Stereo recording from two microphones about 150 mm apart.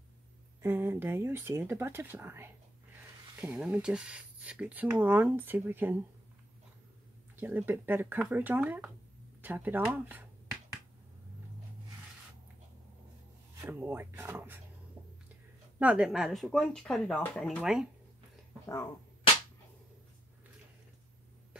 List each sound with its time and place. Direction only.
0.6 s speech: 15° right (ahead or behind)
7.3 s speech: 10° right (ahead or behind)
13.6 s speech: 15° right (ahead or behind)
15.8 s speech: 10° right (ahead or behind)